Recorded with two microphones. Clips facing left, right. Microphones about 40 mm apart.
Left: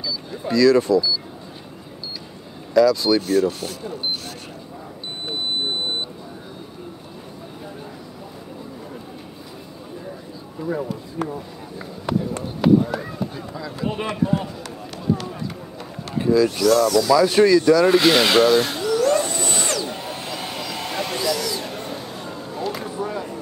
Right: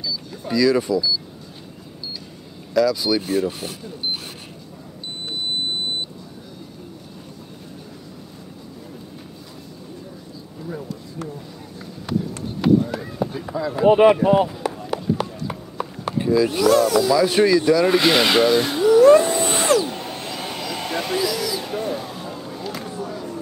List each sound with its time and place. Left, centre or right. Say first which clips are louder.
0.5 s speech: left 3 dB; centre
2.7 s speech: left 3 dB; centre
3.2 s speech: left 3 dB; centre
10.6 s a sound: left 7 dB; left
12.1 s run: left 2 dB; centre
13.2 s speech: right 5 dB; centre
13.8 s speech: right 10 dB; right
15.1 s run: right 2 dB; centre
16.2 s speech: left 1 dB; centre
16.4 s speech: right 1 dB; centre
17.1 s speech: left 4 dB; centre
19.4 s a sound: right 6 dB; centre
19.9 s a sound: even; centre
23.0 s a sound: left 2 dB; centre